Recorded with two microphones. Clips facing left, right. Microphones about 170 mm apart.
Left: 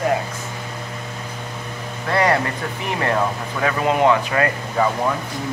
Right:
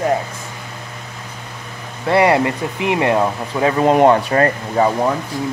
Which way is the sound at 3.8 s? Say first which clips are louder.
Right 5 dB; 40° right (ahead or behind).